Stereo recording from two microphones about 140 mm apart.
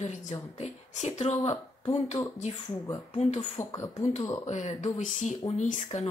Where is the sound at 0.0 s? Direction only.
60° left (ahead or behind).